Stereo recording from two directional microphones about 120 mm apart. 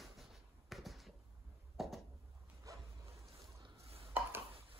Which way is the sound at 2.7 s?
30° right (ahead or behind).